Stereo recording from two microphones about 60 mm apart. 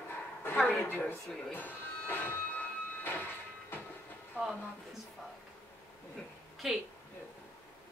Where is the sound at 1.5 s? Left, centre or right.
Left.